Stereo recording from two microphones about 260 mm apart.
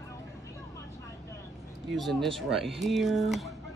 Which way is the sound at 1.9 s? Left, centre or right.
Centre.